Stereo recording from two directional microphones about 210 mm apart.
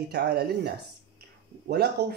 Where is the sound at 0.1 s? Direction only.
50° right (ahead or behind).